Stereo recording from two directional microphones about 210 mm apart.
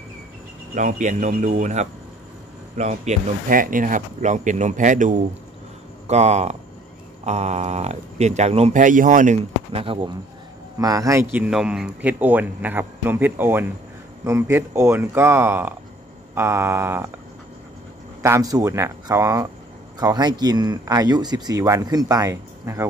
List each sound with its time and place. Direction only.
0.7 s speech: 35° right (ahead or behind); by 17.1 s 10° right (ahead or behind)
18.2 s speech: 15° right (ahead or behind)